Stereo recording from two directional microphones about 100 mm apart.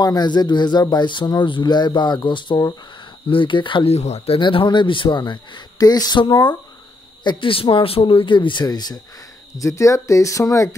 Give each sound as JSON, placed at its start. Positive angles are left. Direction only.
{"t": 0.0, "sound": "speech", "side_deg": 45}
{"t": 4.4, "sound": "speech", "side_deg": 50}
{"t": 8.6, "sound": "speech", "side_deg": 40}